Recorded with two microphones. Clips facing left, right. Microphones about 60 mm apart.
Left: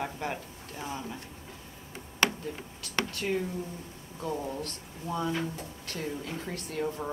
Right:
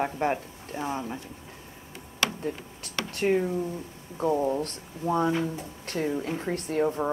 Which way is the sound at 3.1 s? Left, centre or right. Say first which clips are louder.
Right 12 dB; right.